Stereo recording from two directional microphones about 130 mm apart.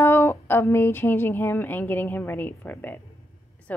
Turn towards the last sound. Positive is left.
turn(degrees=15)  # may be behind; listen again after turning